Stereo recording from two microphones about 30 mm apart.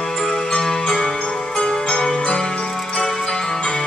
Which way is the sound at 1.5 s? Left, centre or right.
Left.